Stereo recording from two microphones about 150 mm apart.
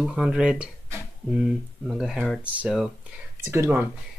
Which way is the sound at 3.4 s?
15° right (ahead or behind).